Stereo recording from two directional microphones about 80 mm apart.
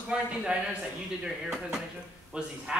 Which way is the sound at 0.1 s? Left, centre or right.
Centre.